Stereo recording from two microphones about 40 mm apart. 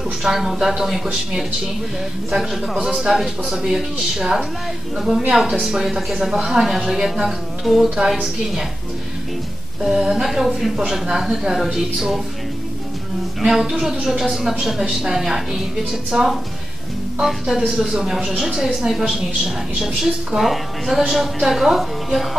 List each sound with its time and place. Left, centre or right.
0.2 s a woman's voice: centre
2.3 s a woman's voice: centre
6.3 s speech: centre
6.6 s a woman's voice: centre
9.8 s a woman's voice: centre
13.4 s a woman's voice: centre
17.9 s a woman's voice: centre